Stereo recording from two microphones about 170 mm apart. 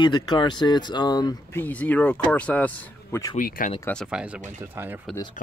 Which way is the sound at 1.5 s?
10° left (ahead or behind).